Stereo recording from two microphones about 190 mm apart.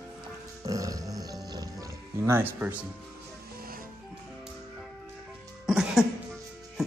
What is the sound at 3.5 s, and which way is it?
Music, 50° right (ahead or behind).